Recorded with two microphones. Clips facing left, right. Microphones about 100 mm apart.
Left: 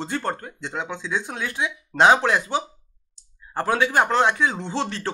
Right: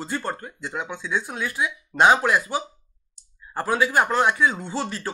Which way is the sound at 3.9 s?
25° left (ahead or behind).